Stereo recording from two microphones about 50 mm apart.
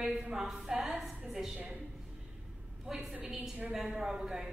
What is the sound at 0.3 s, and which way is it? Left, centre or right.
A woman's voice, centre.